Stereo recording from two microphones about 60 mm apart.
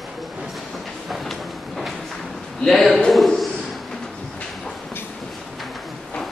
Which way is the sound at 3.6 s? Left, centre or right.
Centre.